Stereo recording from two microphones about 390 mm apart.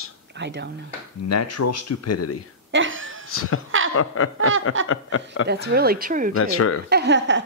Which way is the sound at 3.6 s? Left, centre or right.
Right.